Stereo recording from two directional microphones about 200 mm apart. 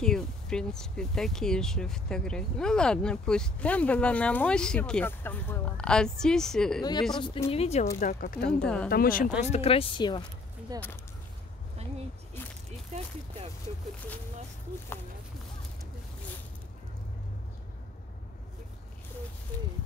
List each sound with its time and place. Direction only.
0.0 s speech: 5° left (ahead or behind)
6.8 s speech: 20° left (ahead or behind)
8.0 s speech: 40° left (ahead or behind)
8.5 s speech: 5° left (ahead or behind)
8.9 s speech: 45° left (ahead or behind)
9.4 s speech: 30° left (ahead or behind)
10.7 s speech: 20° right (ahead or behind)